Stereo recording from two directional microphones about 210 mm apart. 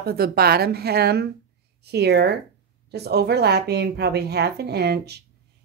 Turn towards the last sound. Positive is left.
turn(degrees=-50)  # may be behind; listen again after turning